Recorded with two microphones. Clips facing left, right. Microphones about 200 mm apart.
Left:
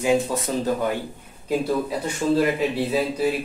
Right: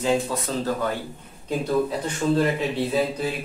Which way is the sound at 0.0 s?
15° left (ahead or behind).